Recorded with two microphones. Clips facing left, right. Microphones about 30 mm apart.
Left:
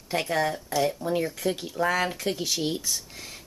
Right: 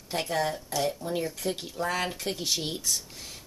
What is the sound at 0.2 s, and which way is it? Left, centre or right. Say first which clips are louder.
Speech: left 1 dB; centre.